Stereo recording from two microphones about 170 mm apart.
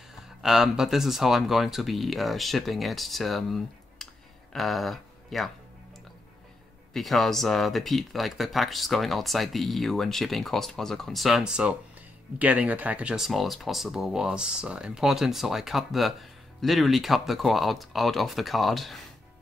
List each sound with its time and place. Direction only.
0.4 s speech: 5° right (ahead or behind)
6.9 s speech: centre (ahead or behind)